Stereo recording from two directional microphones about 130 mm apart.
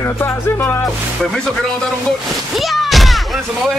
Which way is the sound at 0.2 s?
20° left (ahead or behind).